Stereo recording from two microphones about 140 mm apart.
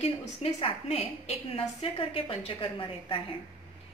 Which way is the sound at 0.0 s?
45° left (ahead or behind).